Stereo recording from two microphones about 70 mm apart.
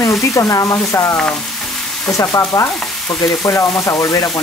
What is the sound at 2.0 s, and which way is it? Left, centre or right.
Stir, left.